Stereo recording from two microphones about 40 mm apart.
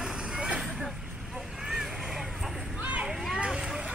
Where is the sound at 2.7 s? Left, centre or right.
Right.